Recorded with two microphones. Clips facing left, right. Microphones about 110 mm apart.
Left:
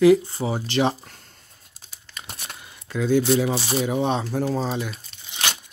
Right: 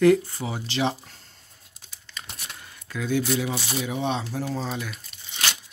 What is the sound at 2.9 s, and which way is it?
Speech, 30° left (ahead or behind).